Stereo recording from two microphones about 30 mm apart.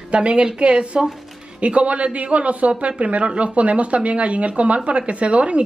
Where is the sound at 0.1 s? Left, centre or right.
Right.